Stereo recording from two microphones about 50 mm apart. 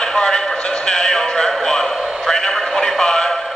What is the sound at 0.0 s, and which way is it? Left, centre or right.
Music, centre.